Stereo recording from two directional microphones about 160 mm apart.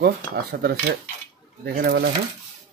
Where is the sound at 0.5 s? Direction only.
90° right.